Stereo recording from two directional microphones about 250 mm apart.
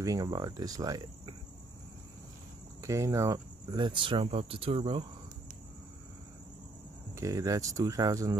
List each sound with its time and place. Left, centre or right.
0.0 s speech: centre
2.8 s speech: centre
7.2 s speech: centre